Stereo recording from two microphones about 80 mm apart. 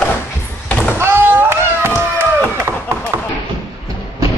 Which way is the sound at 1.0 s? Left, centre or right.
Right.